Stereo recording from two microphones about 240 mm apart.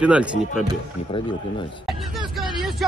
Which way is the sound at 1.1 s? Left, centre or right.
Left.